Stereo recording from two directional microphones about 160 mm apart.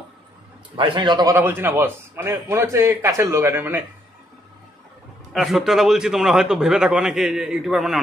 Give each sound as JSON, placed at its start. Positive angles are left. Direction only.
{"t": 0.7, "sound": "a man's voice", "side_deg": -30}
{"t": 1.3, "sound": "a man's voice", "side_deg": -15}
{"t": 5.3, "sound": "a man's voice", "side_deg": 0}